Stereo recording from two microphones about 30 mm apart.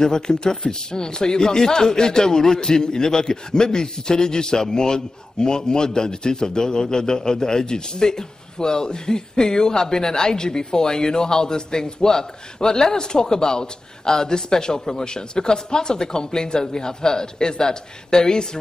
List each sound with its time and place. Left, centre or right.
0.0 s a man's voice: left